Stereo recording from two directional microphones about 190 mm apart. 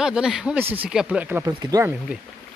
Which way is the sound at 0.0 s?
5° right (ahead or behind).